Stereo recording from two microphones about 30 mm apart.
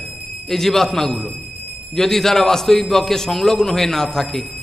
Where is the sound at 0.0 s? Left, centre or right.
Right.